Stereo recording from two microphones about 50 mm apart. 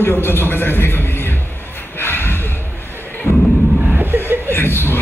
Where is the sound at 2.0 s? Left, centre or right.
Left.